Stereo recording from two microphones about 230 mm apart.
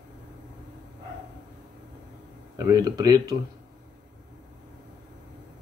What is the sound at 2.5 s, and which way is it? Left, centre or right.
Speech, centre.